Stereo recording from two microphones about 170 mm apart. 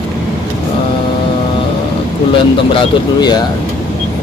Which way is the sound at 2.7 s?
30° left (ahead or behind).